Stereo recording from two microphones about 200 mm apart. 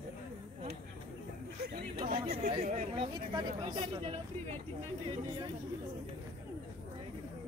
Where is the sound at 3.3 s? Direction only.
25° right (ahead or behind).